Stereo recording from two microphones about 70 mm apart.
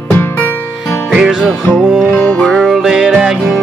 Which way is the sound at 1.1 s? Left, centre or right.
Centre.